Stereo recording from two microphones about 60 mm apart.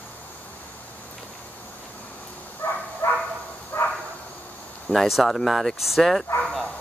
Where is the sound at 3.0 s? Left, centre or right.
Left.